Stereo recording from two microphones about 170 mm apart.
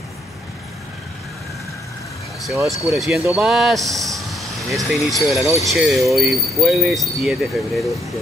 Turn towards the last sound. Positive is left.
turn(degrees=0)  # may be behind; listen again after turning